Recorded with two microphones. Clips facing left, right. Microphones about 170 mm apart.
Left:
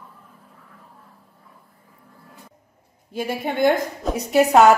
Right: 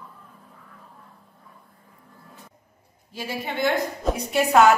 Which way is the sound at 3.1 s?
50° left (ahead or behind).